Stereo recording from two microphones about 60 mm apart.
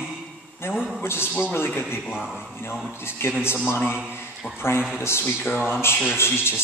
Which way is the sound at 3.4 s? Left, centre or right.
Left.